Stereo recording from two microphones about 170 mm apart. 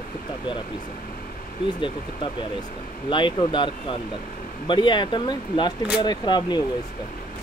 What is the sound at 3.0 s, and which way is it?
Speech, 30° left (ahead or behind).